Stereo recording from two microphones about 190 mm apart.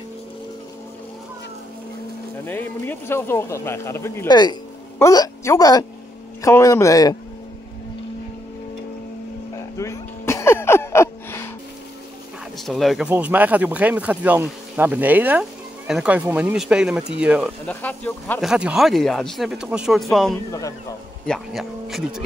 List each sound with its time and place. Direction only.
2.3 s speech: 10° left (ahead or behind)
9.8 s a sound: 15° left (ahead or behind)
12.5 s speech: centre (ahead or behind)
17.6 s speech: 10° left (ahead or behind)
18.4 s speech: 5° right (ahead or behind)